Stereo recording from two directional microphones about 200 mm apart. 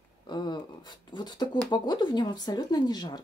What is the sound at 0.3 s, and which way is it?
Speech, 20° left (ahead or behind).